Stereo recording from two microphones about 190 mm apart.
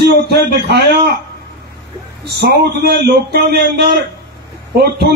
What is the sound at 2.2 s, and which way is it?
A man's voice, 60° right (ahead or behind).